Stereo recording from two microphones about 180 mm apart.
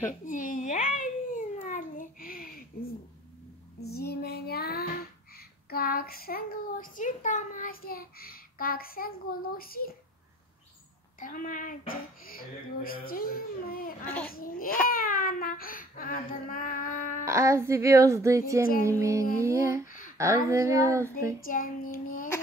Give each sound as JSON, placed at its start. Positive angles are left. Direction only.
{"t": 0.2, "sound": "babbling", "side_deg": 45}
{"t": 3.8, "sound": "a child's voice", "side_deg": 60}
{"t": 11.1, "sound": "speech", "side_deg": 50}
{"t": 14.0, "sound": "a child's voice", "side_deg": 5}
{"t": 14.3, "sound": "speech", "side_deg": 55}
{"t": 17.2, "sound": "speech", "side_deg": -15}
{"t": 21.5, "sound": "speech", "side_deg": 50}